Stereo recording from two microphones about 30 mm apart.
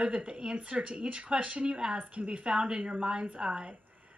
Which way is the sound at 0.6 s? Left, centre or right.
Right.